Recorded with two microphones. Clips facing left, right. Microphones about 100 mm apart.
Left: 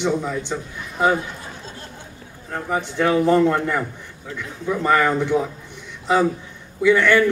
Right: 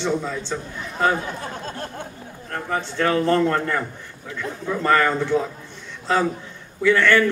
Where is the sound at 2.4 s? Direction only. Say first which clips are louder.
Left 2 dB; 10° left (ahead or behind).